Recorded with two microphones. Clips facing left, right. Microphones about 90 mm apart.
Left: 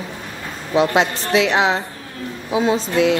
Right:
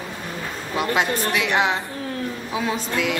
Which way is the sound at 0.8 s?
25° left (ahead or behind).